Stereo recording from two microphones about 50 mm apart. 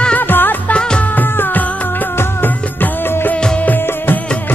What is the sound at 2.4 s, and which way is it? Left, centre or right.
Music, left.